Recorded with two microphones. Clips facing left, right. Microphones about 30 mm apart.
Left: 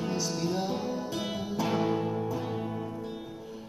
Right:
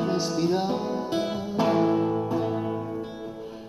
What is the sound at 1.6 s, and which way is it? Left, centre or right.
Music, centre.